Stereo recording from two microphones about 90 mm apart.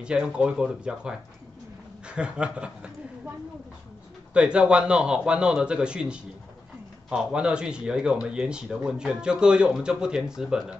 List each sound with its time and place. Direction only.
0.0 s speech: 10° right (ahead or behind)
4.3 s speech: 10° right (ahead or behind)